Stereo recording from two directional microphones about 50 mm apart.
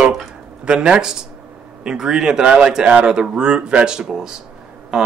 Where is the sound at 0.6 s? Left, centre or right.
Centre.